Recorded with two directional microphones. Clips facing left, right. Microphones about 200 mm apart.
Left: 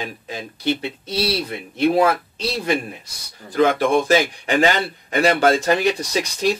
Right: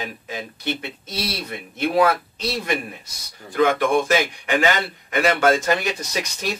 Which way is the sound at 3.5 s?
35° left (ahead or behind).